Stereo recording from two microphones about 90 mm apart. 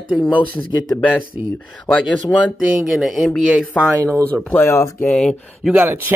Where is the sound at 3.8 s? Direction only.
35° right (ahead or behind).